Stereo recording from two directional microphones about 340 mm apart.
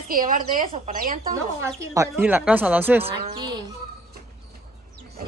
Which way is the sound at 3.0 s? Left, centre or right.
Centre.